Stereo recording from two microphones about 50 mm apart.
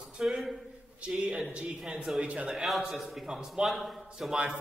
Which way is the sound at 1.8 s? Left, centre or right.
Centre.